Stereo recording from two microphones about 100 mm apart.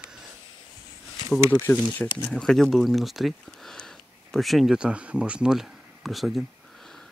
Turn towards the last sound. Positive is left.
turn(degrees=0)  # may be behind; listen again after turning